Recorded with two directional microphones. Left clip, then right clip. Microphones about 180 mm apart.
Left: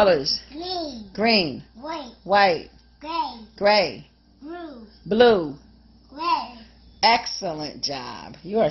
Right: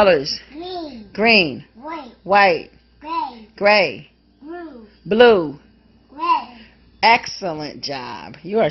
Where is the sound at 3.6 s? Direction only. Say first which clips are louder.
Right 4 dB; 20° right (ahead or behind).